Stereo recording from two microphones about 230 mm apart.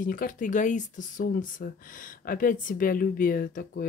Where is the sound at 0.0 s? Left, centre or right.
Left.